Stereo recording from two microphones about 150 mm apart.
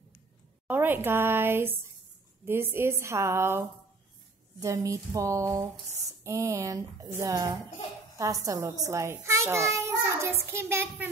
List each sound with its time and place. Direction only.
0.7 s a woman's voice: 15° right (ahead or behind)